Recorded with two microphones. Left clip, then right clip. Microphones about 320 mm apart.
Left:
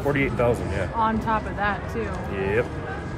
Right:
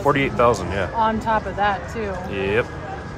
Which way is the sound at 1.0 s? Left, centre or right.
Right.